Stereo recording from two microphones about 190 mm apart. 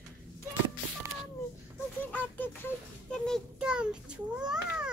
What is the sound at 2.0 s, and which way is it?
A child's voice, 10° left (ahead or behind).